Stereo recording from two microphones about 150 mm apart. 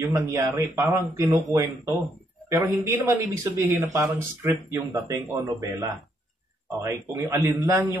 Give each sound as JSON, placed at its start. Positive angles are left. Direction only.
{"t": 0.0, "sound": "speech", "side_deg": -20}
{"t": 6.8, "sound": "speech", "side_deg": -20}